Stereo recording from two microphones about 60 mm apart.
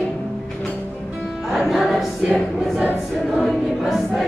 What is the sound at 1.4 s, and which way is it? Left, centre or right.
Choir, centre.